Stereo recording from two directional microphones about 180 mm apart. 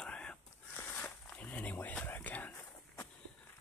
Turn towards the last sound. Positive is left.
turn(degrees=15)  # may be behind; listen again after turning